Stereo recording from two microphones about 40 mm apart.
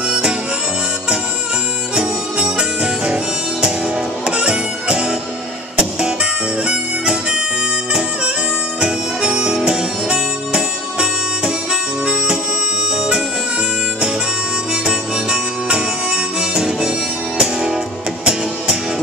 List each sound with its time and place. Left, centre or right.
0.0 s harmonica: right
2.0 s harmonica: right
4.3 s music: right
6.6 s harmonica: right
8.8 s harmonica: right
12.9 s bagpipes: right
14.7 s harmonica: centre
17.4 s music: centre